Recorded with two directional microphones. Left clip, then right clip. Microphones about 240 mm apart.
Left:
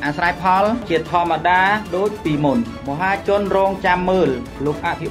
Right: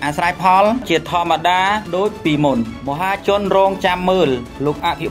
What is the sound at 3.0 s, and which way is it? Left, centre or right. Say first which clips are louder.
Speech: even; right.